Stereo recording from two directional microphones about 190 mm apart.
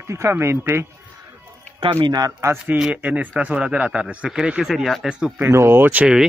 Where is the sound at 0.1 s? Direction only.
15° right (ahead or behind).